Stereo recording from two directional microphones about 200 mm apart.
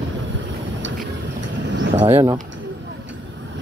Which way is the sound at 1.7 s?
65° right (ahead or behind).